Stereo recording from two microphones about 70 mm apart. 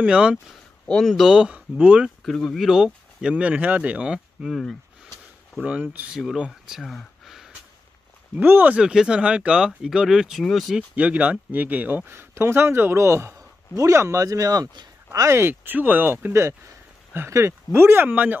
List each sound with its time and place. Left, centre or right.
0.0 s speech: centre
1.0 s speech: centre
2.0 s speech: centre
4.5 s speech: centre
5.6 s speech: right
6.1 s speech: centre
6.8 s a sound: centre
8.4 s speech: right
8.7 s speech: centre
10.4 s speech: centre
11.0 s speech: centre
12.1 s speech: right
15.1 s speech: right
17.3 s speech: right